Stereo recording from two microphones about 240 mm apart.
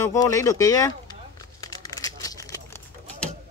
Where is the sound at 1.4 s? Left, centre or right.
Centre.